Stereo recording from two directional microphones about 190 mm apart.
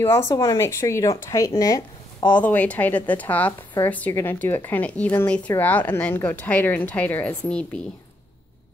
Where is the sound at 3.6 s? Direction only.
20° left (ahead or behind).